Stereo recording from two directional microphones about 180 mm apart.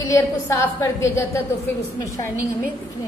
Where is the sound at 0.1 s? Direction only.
15° left (ahead or behind).